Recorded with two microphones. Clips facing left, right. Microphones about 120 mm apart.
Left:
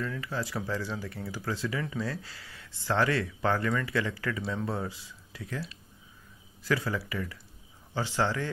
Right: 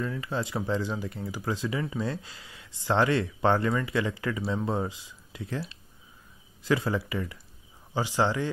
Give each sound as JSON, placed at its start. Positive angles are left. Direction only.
{"t": 0.0, "sound": "speech", "side_deg": -25}
{"t": 6.6, "sound": "speech", "side_deg": -20}